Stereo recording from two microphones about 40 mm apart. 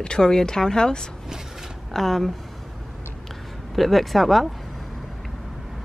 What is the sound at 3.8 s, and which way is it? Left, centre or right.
Speech, centre.